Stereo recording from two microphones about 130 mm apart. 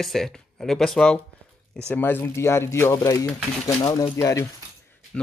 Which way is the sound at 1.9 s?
15° left (ahead or behind).